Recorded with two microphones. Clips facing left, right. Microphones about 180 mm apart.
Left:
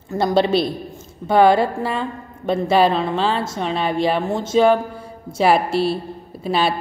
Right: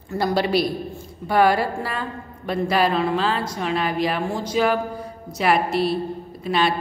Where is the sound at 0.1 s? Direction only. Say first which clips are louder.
Left 4 dB; 25° left (ahead or behind).